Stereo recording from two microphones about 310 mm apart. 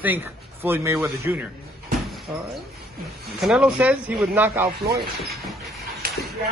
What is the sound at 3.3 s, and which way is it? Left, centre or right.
A man's voice, centre.